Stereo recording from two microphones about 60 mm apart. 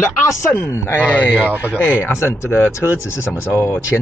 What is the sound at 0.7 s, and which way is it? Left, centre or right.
Speech, left.